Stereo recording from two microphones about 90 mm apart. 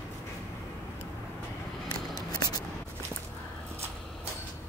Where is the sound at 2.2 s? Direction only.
45° left (ahead or behind).